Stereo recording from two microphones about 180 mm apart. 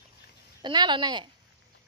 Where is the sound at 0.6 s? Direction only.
25° right (ahead or behind).